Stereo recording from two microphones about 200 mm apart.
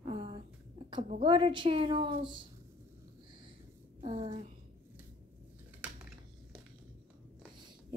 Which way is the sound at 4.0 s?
30° right (ahead or behind).